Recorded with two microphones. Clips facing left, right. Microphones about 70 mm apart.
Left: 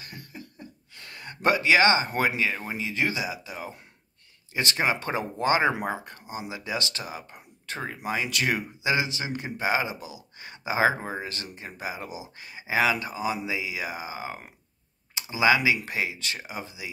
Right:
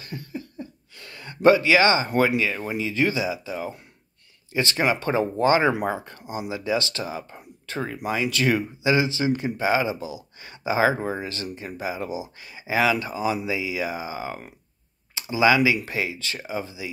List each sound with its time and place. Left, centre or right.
0.0 s speech: left
9.9 s speech: right
10.4 s speech: left